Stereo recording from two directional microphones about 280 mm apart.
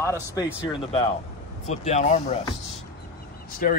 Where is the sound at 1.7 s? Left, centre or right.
Left.